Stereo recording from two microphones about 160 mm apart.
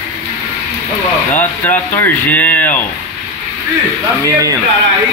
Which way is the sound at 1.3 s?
10° left (ahead or behind).